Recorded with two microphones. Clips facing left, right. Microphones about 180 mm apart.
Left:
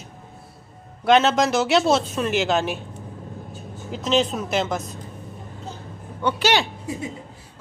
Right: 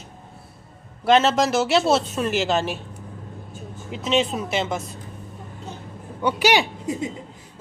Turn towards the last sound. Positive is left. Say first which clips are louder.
# right 2 dB
turn(degrees=-10)  # may be behind; listen again after turning